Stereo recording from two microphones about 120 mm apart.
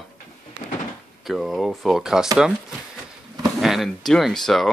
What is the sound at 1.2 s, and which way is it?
Speech, centre (ahead or behind).